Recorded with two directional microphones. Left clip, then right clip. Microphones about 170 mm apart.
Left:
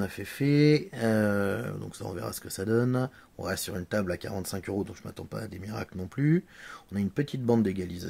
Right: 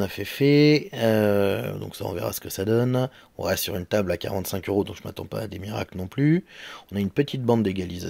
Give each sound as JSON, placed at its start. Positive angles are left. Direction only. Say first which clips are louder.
{"t": 0.0, "sound": "speech", "louder": "right 8 dB", "side_deg": -20}